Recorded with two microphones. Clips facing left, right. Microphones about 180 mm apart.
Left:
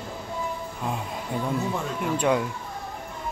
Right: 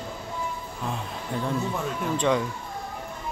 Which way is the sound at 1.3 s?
10° left (ahead or behind).